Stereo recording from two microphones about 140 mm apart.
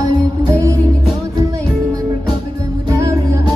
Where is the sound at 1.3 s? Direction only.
25° right (ahead or behind).